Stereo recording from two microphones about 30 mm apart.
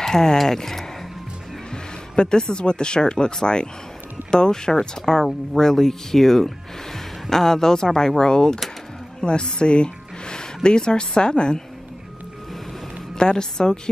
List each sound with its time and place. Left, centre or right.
0.0 s speech: centre
1.7 s speech: left
13.2 s speech: left